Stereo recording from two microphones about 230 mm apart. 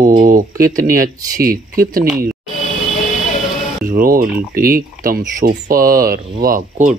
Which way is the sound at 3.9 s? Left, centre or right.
Right.